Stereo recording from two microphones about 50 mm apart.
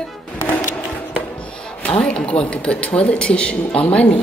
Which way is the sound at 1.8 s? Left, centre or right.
Left.